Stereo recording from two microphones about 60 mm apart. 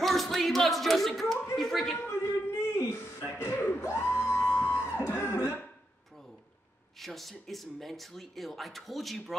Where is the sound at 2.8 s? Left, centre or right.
Left.